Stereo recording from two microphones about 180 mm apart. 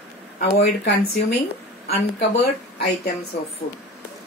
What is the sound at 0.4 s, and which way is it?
A woman's voice, 60° left (ahead or behind).